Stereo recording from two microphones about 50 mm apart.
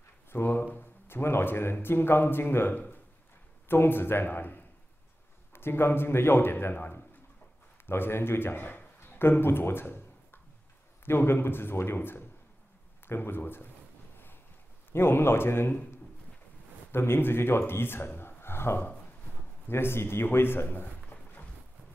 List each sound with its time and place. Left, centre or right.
0.3 s speech: left
6.7 s speech: left
7.8 s speech: left
14.9 s speech: left
16.9 s speech: left
20.6 s a sound: left